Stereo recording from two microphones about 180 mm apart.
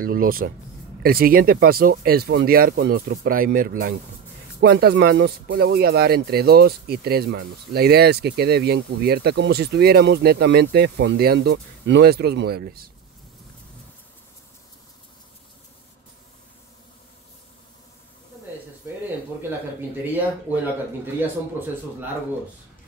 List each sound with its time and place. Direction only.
0.0 s speech: 55° right (ahead or behind)
21.2 s speech: 10° right (ahead or behind)